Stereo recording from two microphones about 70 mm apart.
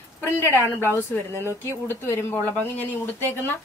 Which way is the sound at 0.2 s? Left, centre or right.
Left.